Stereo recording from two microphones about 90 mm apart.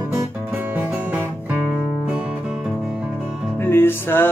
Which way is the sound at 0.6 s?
20° right (ahead or behind).